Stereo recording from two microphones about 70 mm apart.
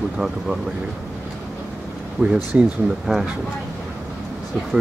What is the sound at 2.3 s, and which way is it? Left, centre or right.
Speech, centre.